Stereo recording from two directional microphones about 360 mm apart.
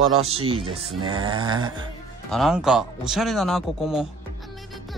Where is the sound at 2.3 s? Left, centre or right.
Centre.